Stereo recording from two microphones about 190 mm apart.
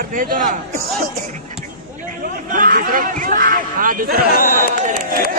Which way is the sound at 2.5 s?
45° right (ahead or behind).